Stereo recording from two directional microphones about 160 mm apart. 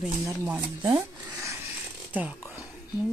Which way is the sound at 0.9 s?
20° right (ahead or behind).